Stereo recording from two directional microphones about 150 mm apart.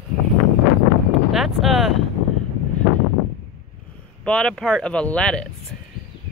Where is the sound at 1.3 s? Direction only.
Centre (ahead or behind).